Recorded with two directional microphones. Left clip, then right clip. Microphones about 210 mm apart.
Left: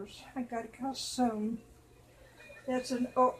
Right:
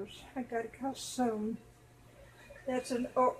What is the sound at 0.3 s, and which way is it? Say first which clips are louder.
Speech: right 1 dB; 25° left (ahead or behind).